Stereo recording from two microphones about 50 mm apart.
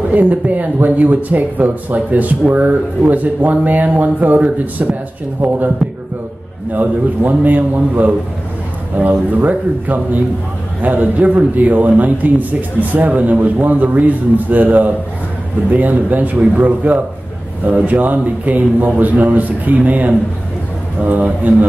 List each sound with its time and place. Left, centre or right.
0.1 s speech: right
5.8 s a sound: centre
6.7 s speech: right
9.4 s speech: right